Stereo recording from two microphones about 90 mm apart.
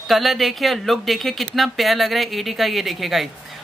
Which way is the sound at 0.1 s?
Centre (ahead or behind).